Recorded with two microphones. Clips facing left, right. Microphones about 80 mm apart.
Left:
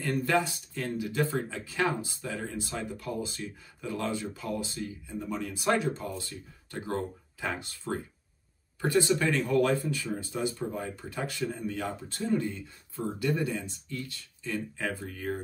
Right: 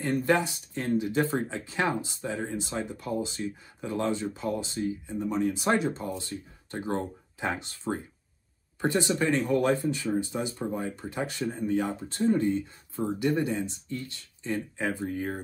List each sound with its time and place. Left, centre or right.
0.0 s speech: right